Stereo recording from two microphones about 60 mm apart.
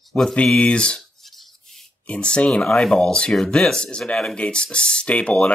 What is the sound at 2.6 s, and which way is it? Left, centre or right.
Speech, centre.